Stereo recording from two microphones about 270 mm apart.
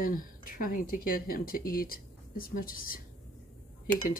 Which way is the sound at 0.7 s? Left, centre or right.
Left.